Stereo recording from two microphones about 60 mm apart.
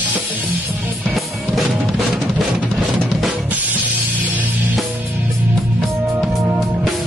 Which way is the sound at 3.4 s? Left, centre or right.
Right.